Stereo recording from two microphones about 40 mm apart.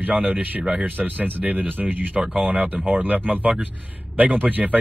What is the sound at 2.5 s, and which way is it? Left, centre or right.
Speech, right.